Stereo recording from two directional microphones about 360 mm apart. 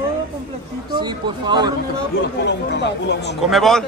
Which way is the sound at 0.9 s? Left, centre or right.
Centre.